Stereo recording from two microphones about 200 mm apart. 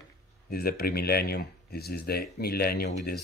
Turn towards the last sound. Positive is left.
turn(degrees=50)  # may be behind; listen again after turning